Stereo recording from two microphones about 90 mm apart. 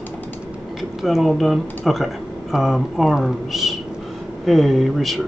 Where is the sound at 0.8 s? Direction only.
Centre (ahead or behind).